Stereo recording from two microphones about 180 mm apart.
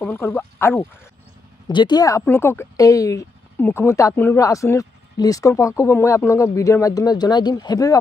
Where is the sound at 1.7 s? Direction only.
25° left (ahead or behind).